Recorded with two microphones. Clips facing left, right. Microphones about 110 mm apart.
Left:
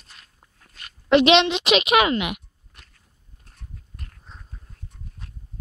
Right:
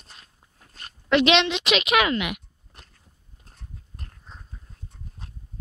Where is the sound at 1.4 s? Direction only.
35° left (ahead or behind).